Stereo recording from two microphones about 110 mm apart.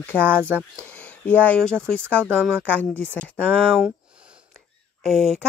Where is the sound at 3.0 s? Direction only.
10° left (ahead or behind).